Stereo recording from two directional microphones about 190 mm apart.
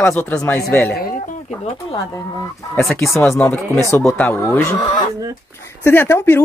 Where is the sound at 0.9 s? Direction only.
50° left (ahead or behind).